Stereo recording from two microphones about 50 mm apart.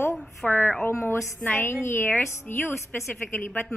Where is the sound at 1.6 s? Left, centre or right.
Left.